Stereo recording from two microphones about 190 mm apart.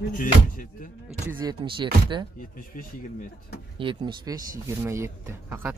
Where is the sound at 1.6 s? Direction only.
25° right (ahead or behind).